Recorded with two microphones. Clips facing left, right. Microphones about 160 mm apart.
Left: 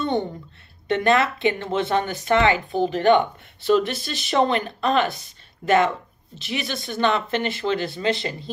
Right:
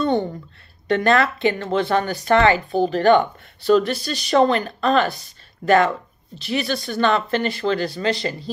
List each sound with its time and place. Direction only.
0.8 s speech: 20° left (ahead or behind)
6.3 s speech: 20° left (ahead or behind)